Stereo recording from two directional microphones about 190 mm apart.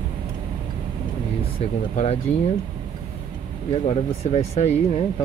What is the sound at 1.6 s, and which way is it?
Speech, 35° left (ahead or behind).